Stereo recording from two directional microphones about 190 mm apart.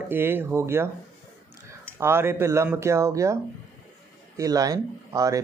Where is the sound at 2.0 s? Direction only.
15° right (ahead or behind).